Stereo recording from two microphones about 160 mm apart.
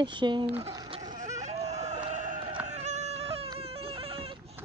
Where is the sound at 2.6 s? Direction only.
45° right (ahead or behind).